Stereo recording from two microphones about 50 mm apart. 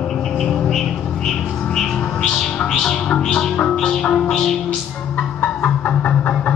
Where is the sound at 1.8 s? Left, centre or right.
Centre.